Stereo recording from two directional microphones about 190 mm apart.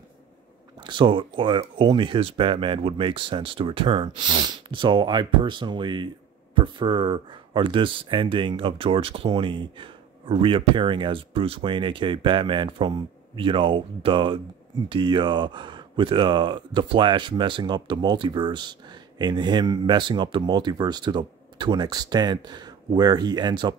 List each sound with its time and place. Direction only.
0.8 s speech: 25° right (ahead or behind)